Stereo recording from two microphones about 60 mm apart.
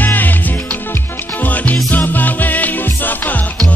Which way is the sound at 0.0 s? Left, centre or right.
Left.